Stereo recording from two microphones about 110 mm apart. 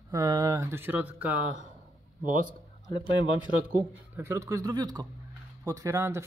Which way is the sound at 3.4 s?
15° right (ahead or behind).